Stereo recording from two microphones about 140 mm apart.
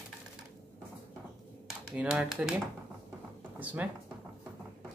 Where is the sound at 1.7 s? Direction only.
5° right (ahead or behind).